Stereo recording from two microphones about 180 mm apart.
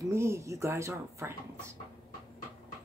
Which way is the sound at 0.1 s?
15° right (ahead or behind).